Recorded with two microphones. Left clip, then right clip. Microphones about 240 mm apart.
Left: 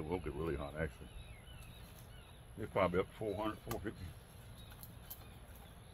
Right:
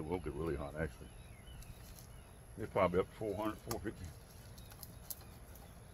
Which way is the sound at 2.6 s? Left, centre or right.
Centre.